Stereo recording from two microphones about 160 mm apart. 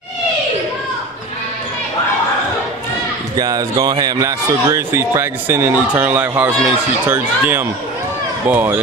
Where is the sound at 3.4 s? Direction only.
25° right (ahead or behind).